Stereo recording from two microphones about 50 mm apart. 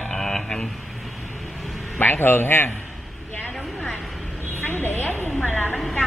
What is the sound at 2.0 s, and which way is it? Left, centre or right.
Speech, left.